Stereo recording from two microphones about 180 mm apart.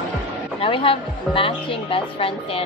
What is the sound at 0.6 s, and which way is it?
A woman's voice, 30° left (ahead or behind).